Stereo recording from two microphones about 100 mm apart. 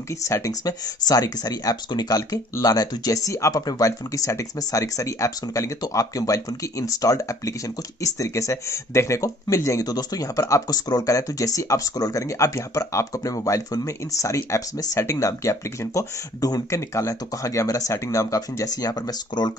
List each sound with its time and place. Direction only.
0.1 s speech: 35° left (ahead or behind)